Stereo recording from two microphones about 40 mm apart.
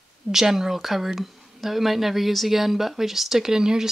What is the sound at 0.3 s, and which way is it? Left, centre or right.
Speech, centre.